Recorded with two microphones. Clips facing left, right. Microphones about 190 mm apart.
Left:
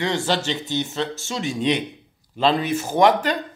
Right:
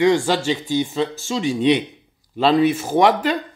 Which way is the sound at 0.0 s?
10° right (ahead or behind).